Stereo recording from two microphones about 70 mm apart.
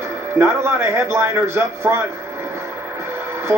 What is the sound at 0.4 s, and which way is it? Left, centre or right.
A man's voice, right.